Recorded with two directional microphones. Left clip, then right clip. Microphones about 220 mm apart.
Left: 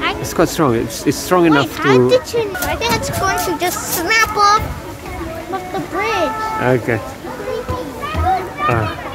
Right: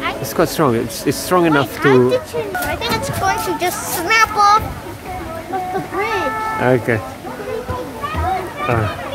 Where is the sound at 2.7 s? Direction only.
10° left (ahead or behind).